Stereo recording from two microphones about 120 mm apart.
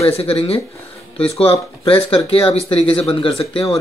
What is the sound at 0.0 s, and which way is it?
Speech, 55° left (ahead or behind).